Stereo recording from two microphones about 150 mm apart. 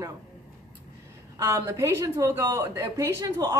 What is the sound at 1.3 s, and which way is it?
A woman's voice, 20° right (ahead or behind).